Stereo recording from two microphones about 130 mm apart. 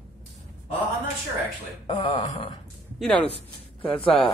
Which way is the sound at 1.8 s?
45° left (ahead or behind).